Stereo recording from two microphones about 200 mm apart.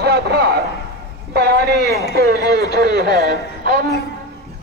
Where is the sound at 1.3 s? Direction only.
50° right (ahead or behind).